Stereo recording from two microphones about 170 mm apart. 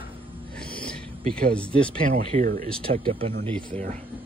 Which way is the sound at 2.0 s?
50° right (ahead or behind).